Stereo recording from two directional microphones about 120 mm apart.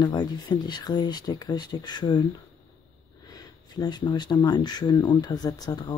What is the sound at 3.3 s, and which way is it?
Speech, 35° left (ahead or behind).